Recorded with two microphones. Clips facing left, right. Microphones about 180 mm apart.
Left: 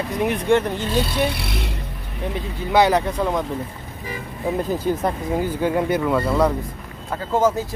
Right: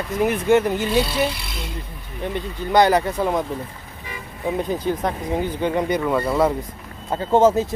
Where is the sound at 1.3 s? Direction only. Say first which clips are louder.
Left 5 dB; 65° left (ahead or behind).